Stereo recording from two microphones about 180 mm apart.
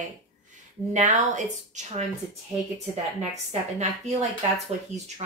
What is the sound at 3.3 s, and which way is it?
Speech, 40° right (ahead or behind).